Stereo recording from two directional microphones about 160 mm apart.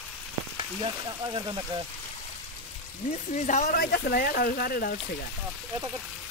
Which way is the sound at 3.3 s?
45° left (ahead or behind).